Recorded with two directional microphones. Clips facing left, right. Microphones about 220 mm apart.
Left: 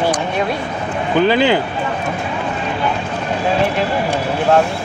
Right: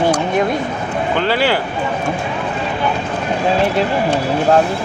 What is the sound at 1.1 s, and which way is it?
Speech, 15° left (ahead or behind).